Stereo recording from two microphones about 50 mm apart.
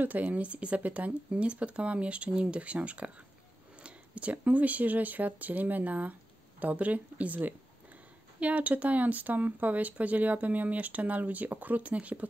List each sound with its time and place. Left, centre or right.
0.0 s speech: right